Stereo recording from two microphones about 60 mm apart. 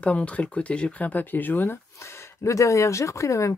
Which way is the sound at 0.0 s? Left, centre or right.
Left.